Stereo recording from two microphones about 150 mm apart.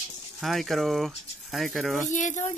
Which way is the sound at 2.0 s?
55° left (ahead or behind).